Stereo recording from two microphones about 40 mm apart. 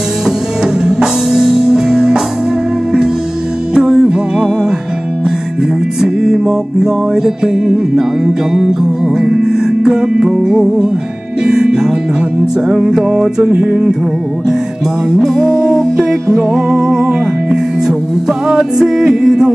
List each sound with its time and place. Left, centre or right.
0.8 s music: centre
3.7 s music: centre
5.9 s music: centre
9.2 s music: centre
15.0 s music: centre